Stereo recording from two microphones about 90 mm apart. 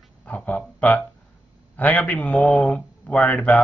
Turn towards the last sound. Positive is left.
turn(degrees=15)  # may be behind; listen again after turning